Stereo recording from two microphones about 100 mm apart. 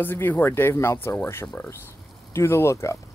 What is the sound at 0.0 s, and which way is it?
Speech, 20° left (ahead or behind).